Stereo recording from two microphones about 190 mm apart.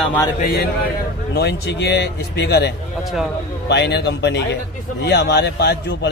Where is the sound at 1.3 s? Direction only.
60° left (ahead or behind).